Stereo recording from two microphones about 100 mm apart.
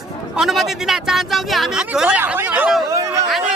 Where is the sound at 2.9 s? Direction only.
30° right (ahead or behind).